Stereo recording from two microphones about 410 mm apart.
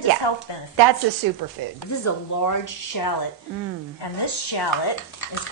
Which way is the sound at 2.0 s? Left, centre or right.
Left.